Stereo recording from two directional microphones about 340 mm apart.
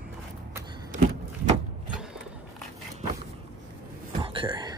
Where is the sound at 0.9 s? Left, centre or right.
Right.